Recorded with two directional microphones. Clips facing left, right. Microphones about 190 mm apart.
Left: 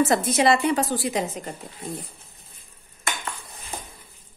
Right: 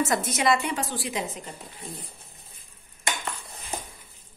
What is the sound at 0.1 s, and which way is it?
A woman's voice, 30° left (ahead or behind).